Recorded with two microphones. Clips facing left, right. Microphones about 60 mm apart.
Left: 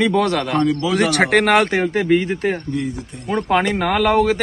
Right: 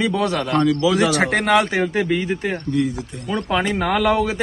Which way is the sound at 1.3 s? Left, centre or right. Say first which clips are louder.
Left 3 dB; left.